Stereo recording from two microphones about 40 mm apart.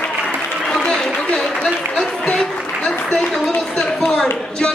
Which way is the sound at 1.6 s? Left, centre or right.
Left.